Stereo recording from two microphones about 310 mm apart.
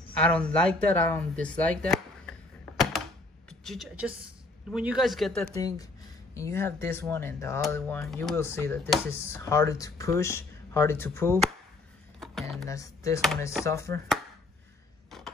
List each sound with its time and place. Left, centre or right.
0.1 s speech: centre
3.4 s a woman's voice: centre
15.0 s a sound: centre